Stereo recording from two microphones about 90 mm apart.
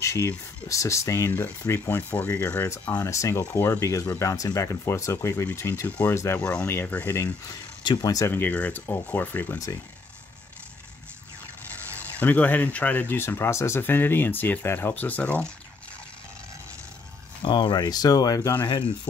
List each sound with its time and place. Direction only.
0.0 s a sound: 35° left (ahead or behind)
0.7 s speech: 35° left (ahead or behind)
3.0 s speech: 35° left (ahead or behind)
5.9 s speech: 15° left (ahead or behind)
7.8 s speech: 50° left (ahead or behind)
8.3 s speech: 20° left (ahead or behind)
12.2 s speech: 20° left (ahead or behind)
17.4 s speech: 60° left (ahead or behind); by 18.5 s 40° left (ahead or behind)